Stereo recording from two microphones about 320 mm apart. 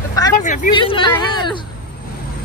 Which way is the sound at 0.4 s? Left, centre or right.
Left.